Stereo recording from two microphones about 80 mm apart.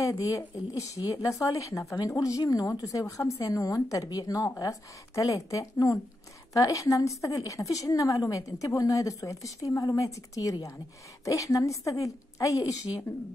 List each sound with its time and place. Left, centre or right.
0.0 s a woman's voice: left